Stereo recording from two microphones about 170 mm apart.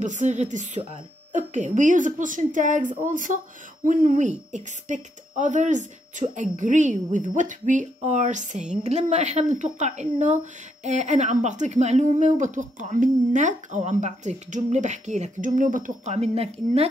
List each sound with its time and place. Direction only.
0.0 s speech: 45° right (ahead or behind)